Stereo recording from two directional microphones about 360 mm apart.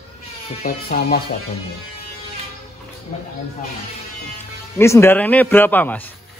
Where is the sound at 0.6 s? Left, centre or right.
Left.